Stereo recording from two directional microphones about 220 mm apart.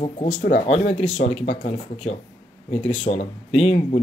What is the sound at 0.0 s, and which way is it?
Speech, 30° left (ahead or behind).